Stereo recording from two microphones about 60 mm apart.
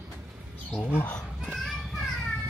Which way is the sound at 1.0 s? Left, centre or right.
Centre.